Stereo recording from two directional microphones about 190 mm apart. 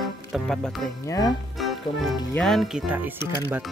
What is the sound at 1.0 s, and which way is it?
Speech, 20° left (ahead or behind).